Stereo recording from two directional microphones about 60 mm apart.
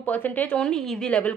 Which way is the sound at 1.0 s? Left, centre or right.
Left.